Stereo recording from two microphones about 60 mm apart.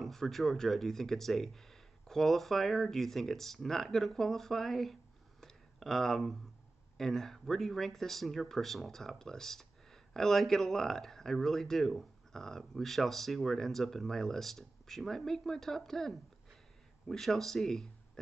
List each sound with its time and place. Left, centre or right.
0.0 s speech: centre
5.4 s a sound: centre
7.0 s speech: centre